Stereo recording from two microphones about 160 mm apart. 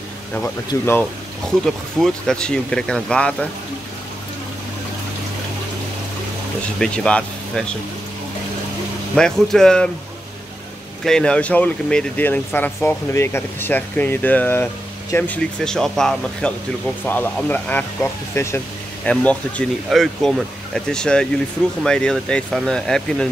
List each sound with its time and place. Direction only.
0.7 s speech: 20° left (ahead or behind)
2.0 s speech: 5° left (ahead or behind)
6.8 s speech: 5° left (ahead or behind)
9.1 s speech: 5° left (ahead or behind)
11.1 s speech: 5° left (ahead or behind)